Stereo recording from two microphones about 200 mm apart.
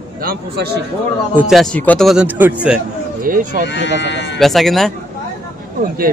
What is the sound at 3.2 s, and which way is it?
Speech, 45° right (ahead or behind).